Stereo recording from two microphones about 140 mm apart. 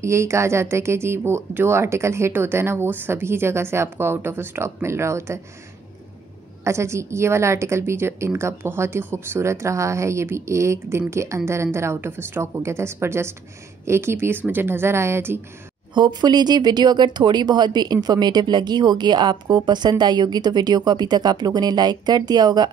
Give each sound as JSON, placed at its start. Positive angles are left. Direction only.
{"t": 0.0, "sound": "a woman's voice", "side_deg": -20}
{"t": 6.6, "sound": "a woman's voice", "side_deg": -20}
{"t": 15.9, "sound": "a woman's voice", "side_deg": -30}